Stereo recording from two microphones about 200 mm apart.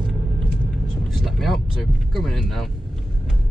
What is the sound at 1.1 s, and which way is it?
Speech, centre (ahead or behind).